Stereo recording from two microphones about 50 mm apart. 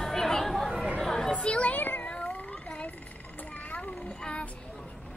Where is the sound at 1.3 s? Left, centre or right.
Left.